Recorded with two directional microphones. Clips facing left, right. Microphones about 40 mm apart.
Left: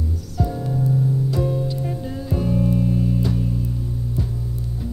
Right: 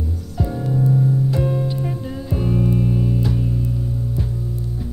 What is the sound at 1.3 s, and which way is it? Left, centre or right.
Music, right.